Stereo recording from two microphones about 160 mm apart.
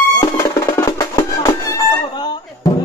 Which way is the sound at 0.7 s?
20° left (ahead or behind).